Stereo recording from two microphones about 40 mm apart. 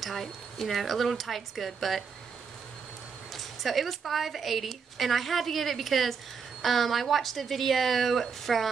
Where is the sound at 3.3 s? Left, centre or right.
Centre.